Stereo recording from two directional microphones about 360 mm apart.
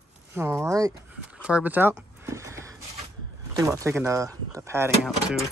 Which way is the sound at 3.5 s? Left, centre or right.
Centre.